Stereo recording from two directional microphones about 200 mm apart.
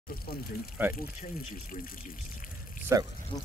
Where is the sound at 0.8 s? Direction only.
10° right (ahead or behind).